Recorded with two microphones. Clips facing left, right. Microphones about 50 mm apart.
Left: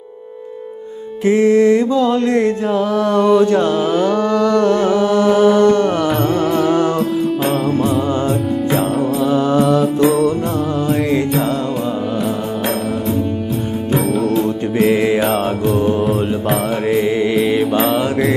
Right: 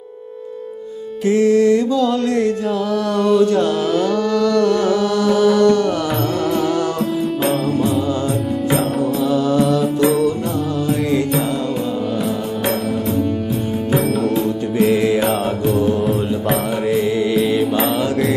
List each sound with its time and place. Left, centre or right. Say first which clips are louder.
1.2 s music: left 2 dB; left
6.0 s music: left 3 dB; centre
9.3 s mantra: left 2 dB; left
9.6 s mantra: left 2 dB; centre
13.9 s music: left 2 dB; centre
15.1 s mantra: left 2 dB; centre
17.3 s mantra: left 1 dB; centre